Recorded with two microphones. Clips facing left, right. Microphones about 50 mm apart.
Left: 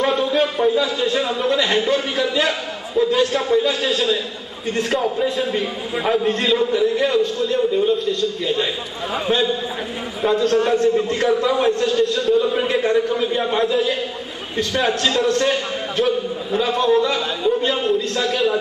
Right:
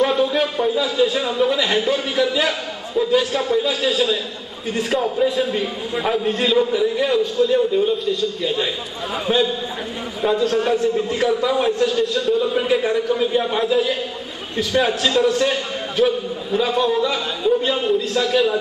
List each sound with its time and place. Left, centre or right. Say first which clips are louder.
0.0 s a man's voice: even; centre
3.0 s a sound: left 1 dB; centre
4.7 s a man's voice: right 1 dB; centre